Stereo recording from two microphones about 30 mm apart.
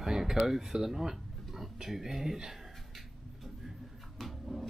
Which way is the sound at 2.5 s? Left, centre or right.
Centre.